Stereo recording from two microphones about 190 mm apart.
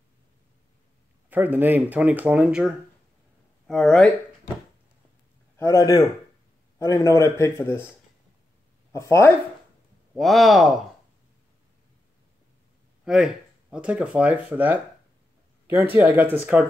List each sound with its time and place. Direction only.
1.3 s speech: 10° right (ahead or behind)
5.6 s speech: 15° left (ahead or behind)
8.9 s speech: 15° left (ahead or behind)
10.1 s speech: centre (ahead or behind)
13.0 s speech: 5° right (ahead or behind)